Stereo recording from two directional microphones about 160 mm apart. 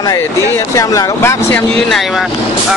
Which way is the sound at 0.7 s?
20° left (ahead or behind).